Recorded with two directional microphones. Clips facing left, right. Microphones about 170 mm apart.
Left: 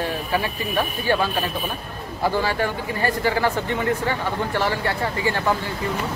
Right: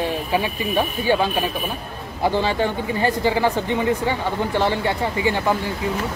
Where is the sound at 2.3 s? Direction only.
20° right (ahead or behind).